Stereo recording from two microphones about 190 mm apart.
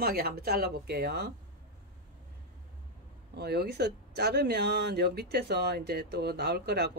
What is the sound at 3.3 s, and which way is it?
Speech, 60° right (ahead or behind).